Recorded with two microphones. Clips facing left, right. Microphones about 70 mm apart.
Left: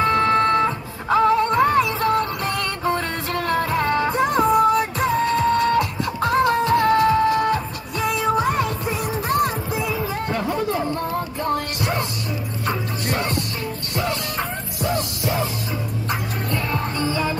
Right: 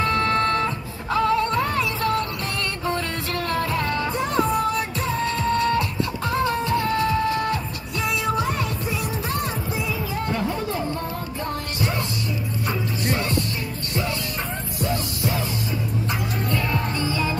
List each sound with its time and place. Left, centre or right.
0.0 s music: left
6.2 s music: left
6.9 s music: left
11.5 s music: left
14.8 s music: left